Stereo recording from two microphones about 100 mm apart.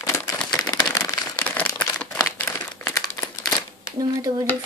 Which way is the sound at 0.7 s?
30° left (ahead or behind).